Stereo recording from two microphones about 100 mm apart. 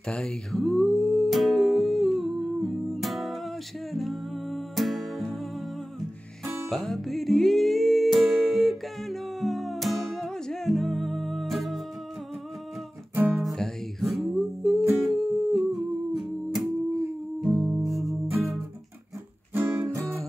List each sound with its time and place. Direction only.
0.1 s music: 5° left (ahead or behind)
6.4 s music: centre (ahead or behind)
13.1 s music: 20° right (ahead or behind)
13.4 s music: centre (ahead or behind)
19.5 s music: 20° right (ahead or behind)